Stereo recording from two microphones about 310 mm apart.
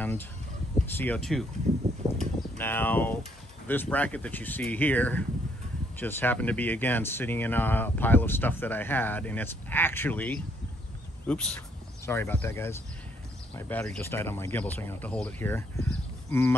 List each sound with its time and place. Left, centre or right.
0.8 s speech: centre
1.7 s a sound: right
2.5 s speech: centre